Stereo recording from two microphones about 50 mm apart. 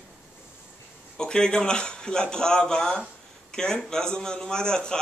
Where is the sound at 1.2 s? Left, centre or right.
Centre.